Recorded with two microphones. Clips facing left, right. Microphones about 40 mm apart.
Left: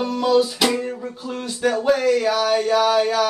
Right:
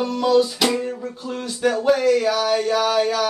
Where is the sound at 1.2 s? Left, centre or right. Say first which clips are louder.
Even; centre.